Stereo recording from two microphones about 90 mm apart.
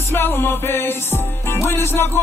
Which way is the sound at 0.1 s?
25° left (ahead or behind).